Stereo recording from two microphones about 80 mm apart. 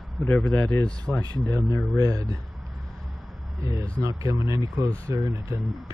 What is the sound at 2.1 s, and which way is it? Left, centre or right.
Speech, right.